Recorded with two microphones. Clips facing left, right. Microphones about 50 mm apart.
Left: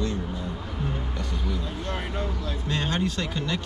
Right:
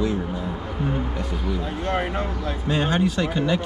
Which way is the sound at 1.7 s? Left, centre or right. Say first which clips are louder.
Right 7 dB; right.